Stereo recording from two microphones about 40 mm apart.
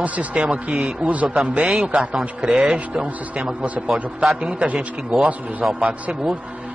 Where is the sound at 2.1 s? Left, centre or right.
Centre.